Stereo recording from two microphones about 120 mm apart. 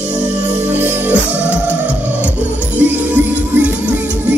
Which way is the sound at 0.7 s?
15° right (ahead or behind).